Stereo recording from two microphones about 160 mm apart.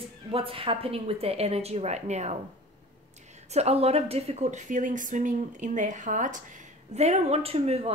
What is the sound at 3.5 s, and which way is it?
A woman's voice, 40° right (ahead or behind).